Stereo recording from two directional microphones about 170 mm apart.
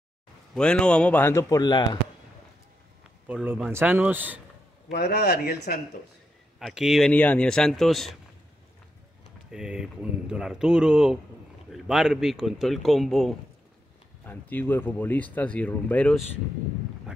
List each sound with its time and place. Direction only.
0.6 s speech: 5° left (ahead or behind); by 1.9 s 25° left (ahead or behind)
3.3 s a man's voice: 10° right (ahead or behind)
4.9 s speech: 75° left (ahead or behind)
6.6 s speech: centre (ahead or behind)
9.5 s speech: 5° right (ahead or behind)